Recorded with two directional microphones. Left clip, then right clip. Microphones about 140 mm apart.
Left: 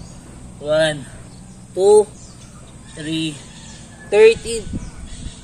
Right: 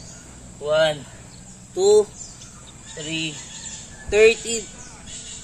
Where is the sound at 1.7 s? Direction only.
15° right (ahead or behind).